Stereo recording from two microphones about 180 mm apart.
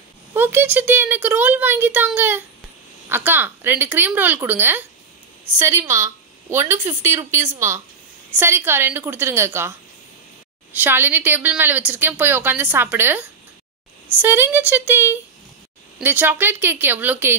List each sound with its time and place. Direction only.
0.3 s a woman's voice: 10° right (ahead or behind)
10.8 s a woman's voice: 10° right (ahead or behind)
14.2 s a woman's voice: 10° right (ahead or behind)